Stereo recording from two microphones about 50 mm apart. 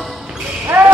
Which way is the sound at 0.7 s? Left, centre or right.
Right.